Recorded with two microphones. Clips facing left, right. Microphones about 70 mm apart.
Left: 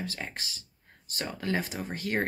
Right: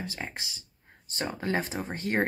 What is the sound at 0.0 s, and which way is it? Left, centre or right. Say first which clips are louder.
Speech: even; right.